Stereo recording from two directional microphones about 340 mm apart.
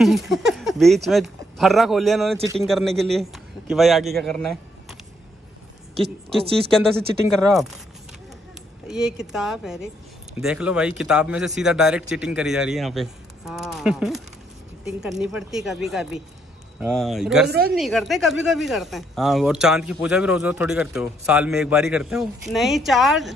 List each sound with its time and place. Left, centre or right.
0.0 s speech: centre
7.5 s speech: centre
8.8 s speech: centre
17.5 s a woman's voice: right
17.7 s speech: centre